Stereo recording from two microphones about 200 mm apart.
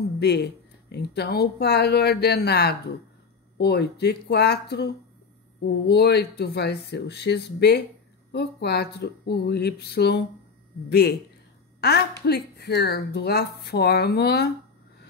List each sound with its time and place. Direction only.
0.2 s a woman's voice: 55° left (ahead or behind)